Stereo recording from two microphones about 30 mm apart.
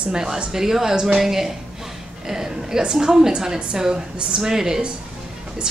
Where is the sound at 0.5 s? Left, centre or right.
Centre.